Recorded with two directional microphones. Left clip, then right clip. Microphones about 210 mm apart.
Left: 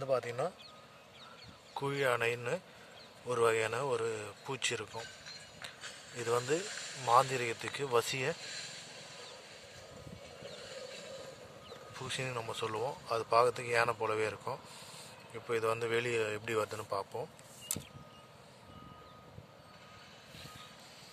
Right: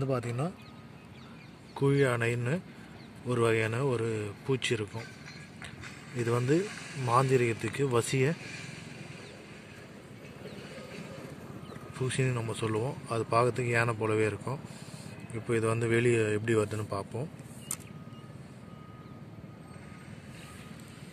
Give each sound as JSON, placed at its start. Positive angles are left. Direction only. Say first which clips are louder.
{"t": 0.0, "sound": "speech", "louder": "even", "side_deg": 10}
{"t": 1.7, "sound": "speech", "louder": "right 5 dB", "side_deg": 5}
{"t": 6.1, "sound": "speech", "louder": "right 4 dB", "side_deg": 10}
{"t": 6.6, "sound": "speech", "louder": "right 5 dB", "side_deg": 30}
{"t": 7.1, "sound": "speech", "louder": "right 2 dB", "side_deg": 10}
{"t": 8.4, "sound": "a sound", "louder": "right 1 dB", "side_deg": 30}
{"t": 12.1, "sound": "a man's voice", "louder": "right 3 dB", "side_deg": 5}